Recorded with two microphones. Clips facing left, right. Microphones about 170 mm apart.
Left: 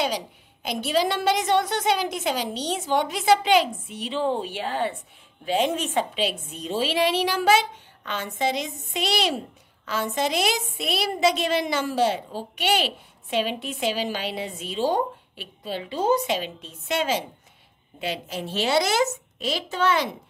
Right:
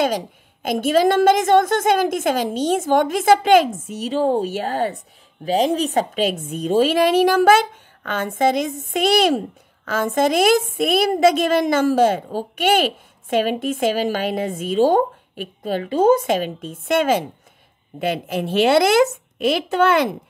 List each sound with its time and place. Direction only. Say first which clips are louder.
0.0 s a woman's voice: right 6 dB; 50° right (ahead or behind)